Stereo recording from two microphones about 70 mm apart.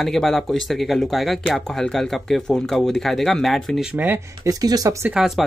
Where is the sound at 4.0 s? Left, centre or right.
Right.